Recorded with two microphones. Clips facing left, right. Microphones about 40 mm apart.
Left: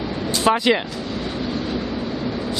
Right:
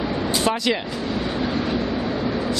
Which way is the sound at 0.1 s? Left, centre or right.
Centre.